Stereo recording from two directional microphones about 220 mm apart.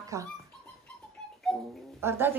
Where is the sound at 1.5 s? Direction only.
Centre (ahead or behind).